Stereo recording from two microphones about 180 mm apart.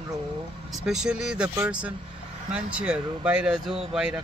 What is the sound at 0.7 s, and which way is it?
A man's voice, centre (ahead or behind).